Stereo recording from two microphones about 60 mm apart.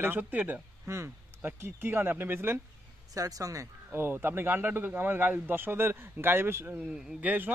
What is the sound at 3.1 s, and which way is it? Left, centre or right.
Speech, right.